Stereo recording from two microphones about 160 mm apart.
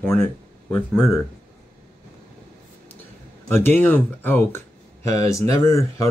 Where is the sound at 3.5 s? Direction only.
15° left (ahead or behind).